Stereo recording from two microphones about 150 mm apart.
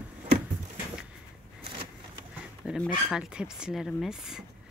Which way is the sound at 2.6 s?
5° right (ahead or behind).